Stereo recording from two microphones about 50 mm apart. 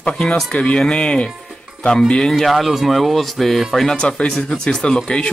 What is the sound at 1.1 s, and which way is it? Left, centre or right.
Speech, centre.